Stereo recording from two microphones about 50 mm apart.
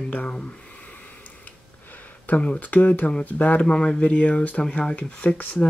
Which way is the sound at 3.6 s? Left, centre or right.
Centre.